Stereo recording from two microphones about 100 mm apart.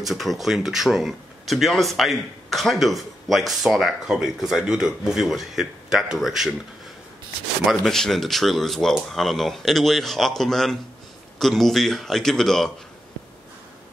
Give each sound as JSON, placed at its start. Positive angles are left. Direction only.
{"t": 0.0, "sound": "speech", "side_deg": 0}
{"t": 7.6, "sound": "speech", "side_deg": 5}